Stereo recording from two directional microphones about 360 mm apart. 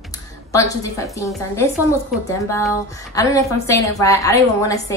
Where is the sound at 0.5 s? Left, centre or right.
Centre.